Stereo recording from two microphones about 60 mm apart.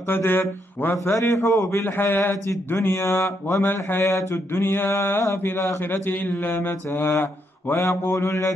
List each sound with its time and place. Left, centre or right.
0.1 s speech: left
1.0 s speech: left
1.9 s speech: left
3.6 s speech: left
4.0 s speech: left
5.9 s speech: left
7.7 s mantra: left